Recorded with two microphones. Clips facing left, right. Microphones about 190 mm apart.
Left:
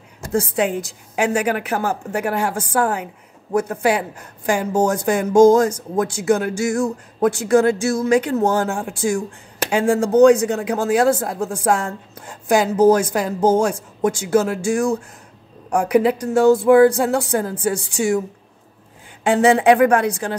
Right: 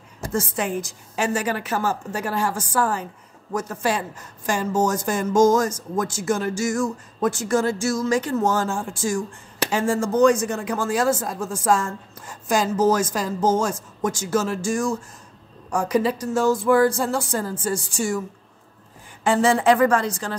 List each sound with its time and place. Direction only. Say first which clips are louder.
0.3 s speech: left 5 dB; 65° left (ahead or behind)
19.2 s speech: left 4 dB; 65° left (ahead or behind)